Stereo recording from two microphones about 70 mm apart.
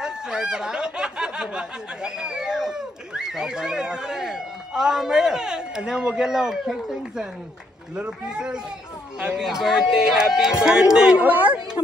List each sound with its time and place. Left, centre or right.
0.0 s speech: centre
11.2 s speech: right